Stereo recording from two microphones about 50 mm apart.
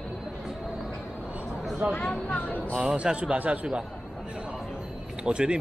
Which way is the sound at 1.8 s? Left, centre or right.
Right.